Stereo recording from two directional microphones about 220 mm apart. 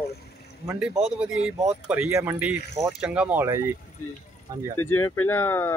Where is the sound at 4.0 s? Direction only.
85° left.